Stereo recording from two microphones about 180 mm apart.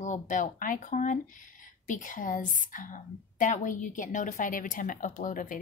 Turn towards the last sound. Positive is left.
turn(degrees=45)  # may be behind; listen again after turning